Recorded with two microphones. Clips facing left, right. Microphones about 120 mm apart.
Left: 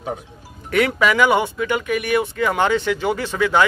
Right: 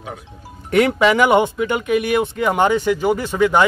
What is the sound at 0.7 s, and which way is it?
Speech, 25° right (ahead or behind).